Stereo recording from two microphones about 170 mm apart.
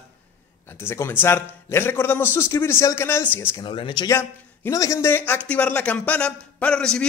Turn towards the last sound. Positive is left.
turn(degrees=5)  # may be behind; listen again after turning